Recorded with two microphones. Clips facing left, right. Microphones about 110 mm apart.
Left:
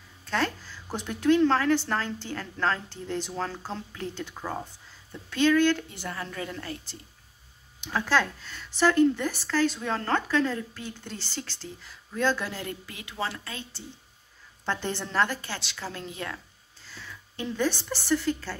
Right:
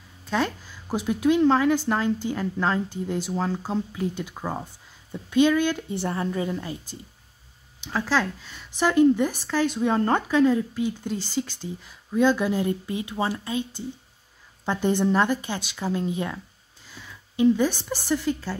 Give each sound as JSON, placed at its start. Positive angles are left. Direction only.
{"t": 0.3, "sound": "a woman's voice", "side_deg": -10}
{"t": 7.8, "sound": "speech", "side_deg": -5}
{"t": 16.9, "sound": "a sound", "side_deg": -10}
{"t": 18.0, "sound": "speech", "side_deg": -10}